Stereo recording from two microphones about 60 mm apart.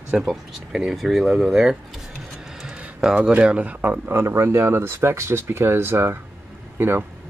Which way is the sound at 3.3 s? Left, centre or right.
Right.